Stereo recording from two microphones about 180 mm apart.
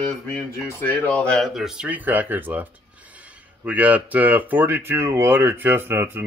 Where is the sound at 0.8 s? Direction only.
10° left (ahead or behind); by 6.2 s 10° right (ahead or behind).